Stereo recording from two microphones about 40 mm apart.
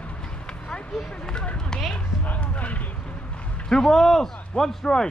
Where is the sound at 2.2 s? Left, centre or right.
Left.